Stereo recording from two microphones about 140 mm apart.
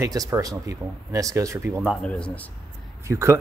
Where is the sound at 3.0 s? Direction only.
20° right (ahead or behind).